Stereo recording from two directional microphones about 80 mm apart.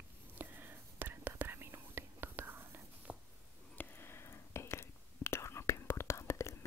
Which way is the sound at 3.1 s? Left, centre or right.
Centre.